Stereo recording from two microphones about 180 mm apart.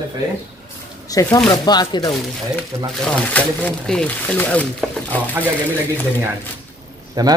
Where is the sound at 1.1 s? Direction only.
20° left (ahead or behind).